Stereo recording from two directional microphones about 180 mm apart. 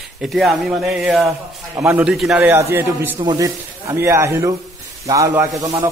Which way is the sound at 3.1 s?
20° right (ahead or behind).